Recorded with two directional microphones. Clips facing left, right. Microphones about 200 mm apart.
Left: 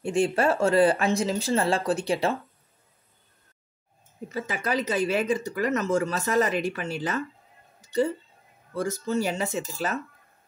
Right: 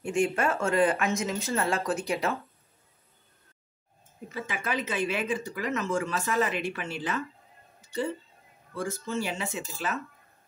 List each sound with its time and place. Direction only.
0.0 s speech: 30° left (ahead or behind)
4.3 s speech: 40° left (ahead or behind)
8.7 s speech: 40° left (ahead or behind)